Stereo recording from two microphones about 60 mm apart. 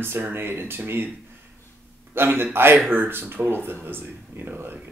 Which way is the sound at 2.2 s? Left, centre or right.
Right.